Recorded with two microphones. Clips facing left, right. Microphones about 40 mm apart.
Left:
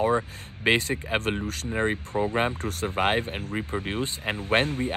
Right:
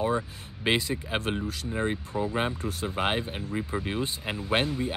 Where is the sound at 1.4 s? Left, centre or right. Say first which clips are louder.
Left 1 dB; left.